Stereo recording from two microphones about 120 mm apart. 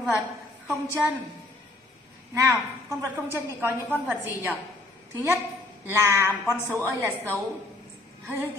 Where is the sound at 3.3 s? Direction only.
20° right (ahead or behind).